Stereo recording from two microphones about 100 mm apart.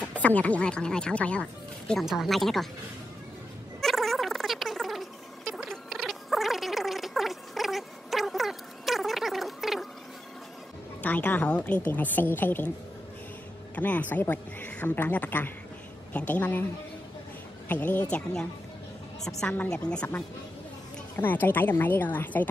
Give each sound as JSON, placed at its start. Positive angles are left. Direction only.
{"t": 0.0, "sound": "a woman's voice", "side_deg": 15}
{"t": 1.9, "sound": "speech", "side_deg": 0}
{"t": 3.8, "sound": "a sound", "side_deg": 0}
{"t": 11.0, "sound": "a woman's voice", "side_deg": 15}
{"t": 13.7, "sound": "a woman's voice", "side_deg": 15}
{"t": 17.6, "sound": "a woman's voice", "side_deg": 15}
{"t": 19.7, "sound": "a woman's voice", "side_deg": 10}
{"t": 21.2, "sound": "a woman's voice", "side_deg": 20}